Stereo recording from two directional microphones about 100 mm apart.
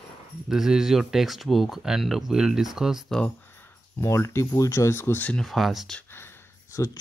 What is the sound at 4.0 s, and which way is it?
Speech, 25° left (ahead or behind).